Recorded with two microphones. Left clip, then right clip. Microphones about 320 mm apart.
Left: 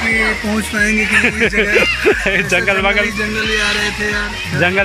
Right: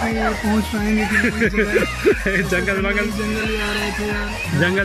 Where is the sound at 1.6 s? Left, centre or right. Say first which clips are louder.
Left 8 dB; left.